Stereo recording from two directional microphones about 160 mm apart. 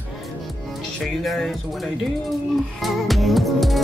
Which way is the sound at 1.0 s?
Centre (ahead or behind).